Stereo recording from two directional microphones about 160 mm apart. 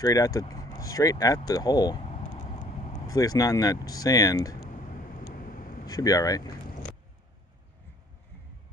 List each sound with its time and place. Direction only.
0.0 s speech: 20° left (ahead or behind)
2.0 s vehicle: 45° left (ahead or behind)
3.1 s speech: 20° left (ahead or behind)
4.6 s vehicle: 55° left (ahead or behind)
5.9 s speech: 25° left (ahead or behind)